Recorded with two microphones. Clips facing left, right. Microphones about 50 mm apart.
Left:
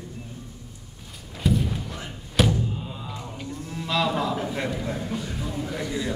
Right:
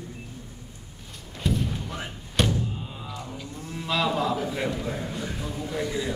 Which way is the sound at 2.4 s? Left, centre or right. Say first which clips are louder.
Left 3 dB; centre.